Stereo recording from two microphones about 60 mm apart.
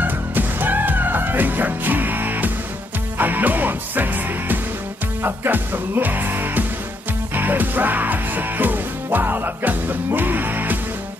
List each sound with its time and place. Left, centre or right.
0.0 s music: right